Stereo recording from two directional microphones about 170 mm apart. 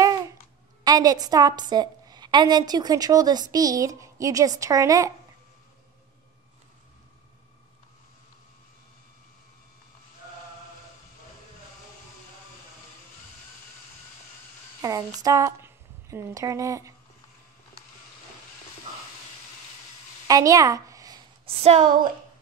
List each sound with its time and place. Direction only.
0.8 s a woman's voice: 20° right (ahead or behind)
14.8 s speech: 20° right (ahead or behind)
20.2 s a sound: 20° right (ahead or behind)
21.5 s a woman's voice: 35° right (ahead or behind)